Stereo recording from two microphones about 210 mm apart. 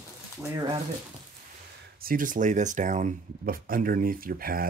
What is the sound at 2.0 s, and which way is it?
Speech, 40° right (ahead or behind).